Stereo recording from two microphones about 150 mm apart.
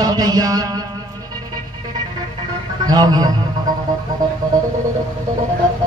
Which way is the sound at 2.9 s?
25° right (ahead or behind).